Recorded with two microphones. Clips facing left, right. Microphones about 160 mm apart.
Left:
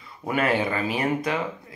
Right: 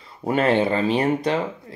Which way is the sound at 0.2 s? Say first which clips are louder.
Right 5 dB; 30° right (ahead or behind).